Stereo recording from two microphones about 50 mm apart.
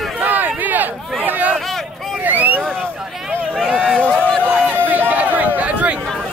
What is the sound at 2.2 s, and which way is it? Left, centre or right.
Vehicle, right.